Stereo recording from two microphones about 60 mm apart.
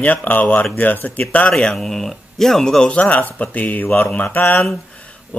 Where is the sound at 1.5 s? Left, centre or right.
Centre.